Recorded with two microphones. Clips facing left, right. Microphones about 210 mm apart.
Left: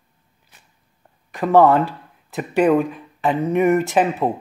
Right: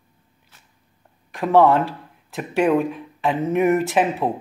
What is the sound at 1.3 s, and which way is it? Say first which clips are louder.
Speech: left 2 dB; centre (ahead or behind).